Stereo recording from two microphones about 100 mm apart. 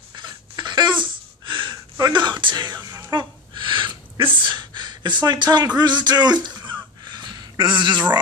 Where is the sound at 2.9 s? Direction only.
30° right (ahead or behind).